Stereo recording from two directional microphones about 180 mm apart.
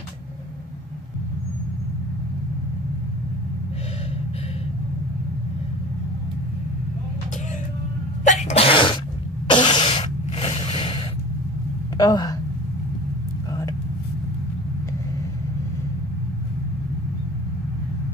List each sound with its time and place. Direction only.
8.2 s sneeze: 40° left (ahead or behind)
9.5 s cough: 25° left (ahead or behind)
12.0 s speech: 20° left (ahead or behind)
13.5 s vehicle: 20° left (ahead or behind)